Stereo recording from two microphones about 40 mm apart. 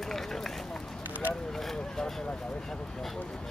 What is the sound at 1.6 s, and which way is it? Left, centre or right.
Speech, centre.